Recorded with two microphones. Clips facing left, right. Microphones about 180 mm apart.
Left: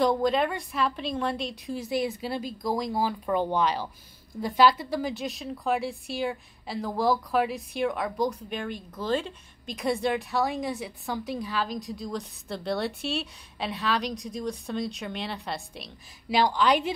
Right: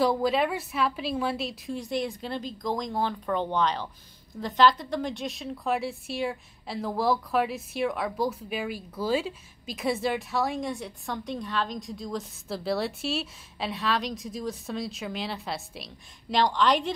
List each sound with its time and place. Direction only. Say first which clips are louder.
0.0 s a woman's voice: left 1 dB; 5° right (ahead or behind)